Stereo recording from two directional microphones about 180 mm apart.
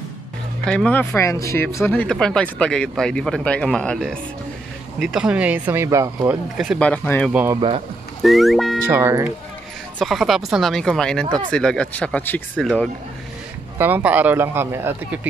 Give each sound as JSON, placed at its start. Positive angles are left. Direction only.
{"t": 0.7, "sound": "speech", "side_deg": 5}
{"t": 6.5, "sound": "speech", "side_deg": 0}
{"t": 8.8, "sound": "speech", "side_deg": -15}
{"t": 9.9, "sound": "speech", "side_deg": 0}
{"t": 13.7, "sound": "speech", "side_deg": -10}